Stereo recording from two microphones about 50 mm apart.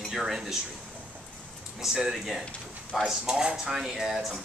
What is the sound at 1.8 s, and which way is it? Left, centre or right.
Speech, centre.